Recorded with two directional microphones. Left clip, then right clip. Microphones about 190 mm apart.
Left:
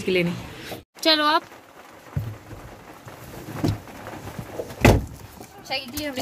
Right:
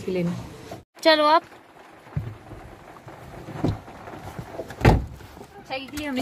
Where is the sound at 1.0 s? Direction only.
20° right (ahead or behind).